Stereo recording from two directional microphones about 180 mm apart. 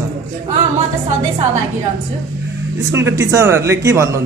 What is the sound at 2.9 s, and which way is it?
A man's voice, 15° right (ahead or behind).